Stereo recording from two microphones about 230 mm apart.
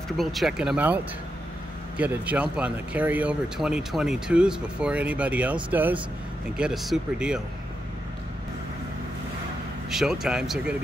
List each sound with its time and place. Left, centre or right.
0.2 s speech: centre
9.8 s speech: centre